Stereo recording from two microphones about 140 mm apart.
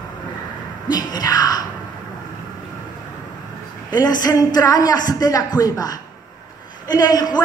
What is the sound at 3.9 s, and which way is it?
A woman's voice, 30° left (ahead or behind).